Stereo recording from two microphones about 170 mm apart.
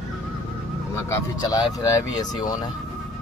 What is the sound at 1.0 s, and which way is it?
Speech, 20° left (ahead or behind).